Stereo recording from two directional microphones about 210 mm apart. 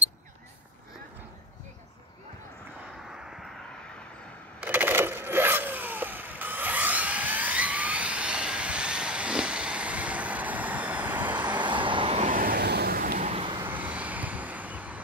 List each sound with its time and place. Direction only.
3.3 s vehicle: centre (ahead or behind)
4.6 s a sound: 10° right (ahead or behind)
11.4 s vehicle: 20° right (ahead or behind); by 13.2 s 45° right (ahead or behind)
13.2 s vehicle: 25° right (ahead or behind)
13.7 s vehicle: 5° right (ahead or behind)